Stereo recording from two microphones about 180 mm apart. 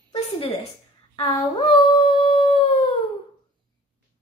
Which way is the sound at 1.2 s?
20° left (ahead or behind).